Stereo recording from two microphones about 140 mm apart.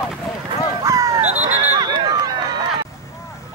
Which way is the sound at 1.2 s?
55° right (ahead or behind).